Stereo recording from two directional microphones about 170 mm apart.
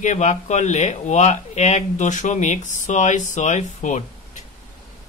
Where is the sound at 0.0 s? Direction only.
45° left (ahead or behind).